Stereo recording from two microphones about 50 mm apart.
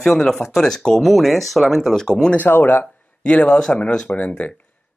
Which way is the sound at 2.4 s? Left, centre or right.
Left.